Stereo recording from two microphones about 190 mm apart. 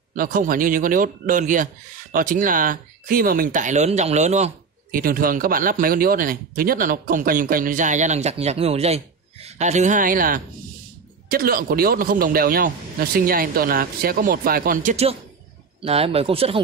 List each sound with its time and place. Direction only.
0.1 s speech: 45° right (ahead or behind)
4.9 s speech: 50° right (ahead or behind); by 16.5 s 30° right (ahead or behind)